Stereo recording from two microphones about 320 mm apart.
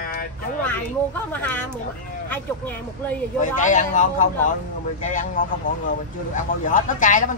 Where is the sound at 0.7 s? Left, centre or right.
Centre.